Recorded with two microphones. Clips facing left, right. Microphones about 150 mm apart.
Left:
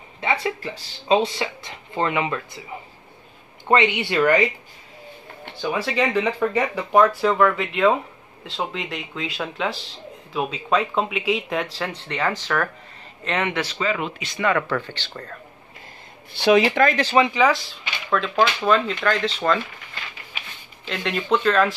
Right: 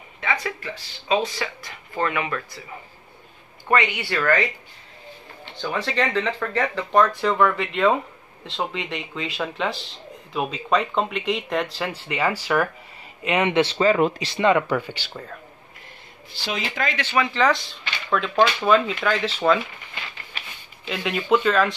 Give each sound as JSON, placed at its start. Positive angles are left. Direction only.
{"t": 0.2, "sound": "speech", "side_deg": 30}
{"t": 3.6, "sound": "speech", "side_deg": 25}
{"t": 5.6, "sound": "speech", "side_deg": 10}
{"t": 13.5, "sound": "speech", "side_deg": -25}
{"t": 13.7, "sound": "speech", "side_deg": -40}
{"t": 14.4, "sound": "speech", "side_deg": -15}
{"t": 16.3, "sound": "speech", "side_deg": 65}
{"t": 16.9, "sound": "speech", "side_deg": 40}
{"t": 17.2, "sound": "speech", "side_deg": 10}
{"t": 20.8, "sound": "speech", "side_deg": -5}